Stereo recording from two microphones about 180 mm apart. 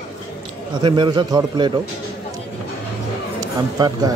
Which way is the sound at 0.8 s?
25° right (ahead or behind).